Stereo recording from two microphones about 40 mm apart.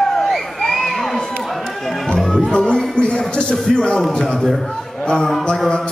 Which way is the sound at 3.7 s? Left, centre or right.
Left.